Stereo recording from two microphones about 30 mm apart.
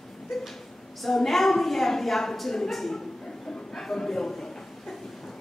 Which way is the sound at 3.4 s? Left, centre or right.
Centre.